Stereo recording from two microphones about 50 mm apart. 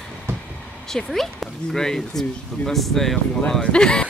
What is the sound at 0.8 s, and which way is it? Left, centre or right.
Speech, centre.